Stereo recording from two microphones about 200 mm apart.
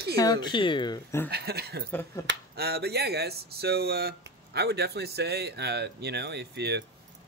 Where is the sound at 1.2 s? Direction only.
55° right (ahead or behind).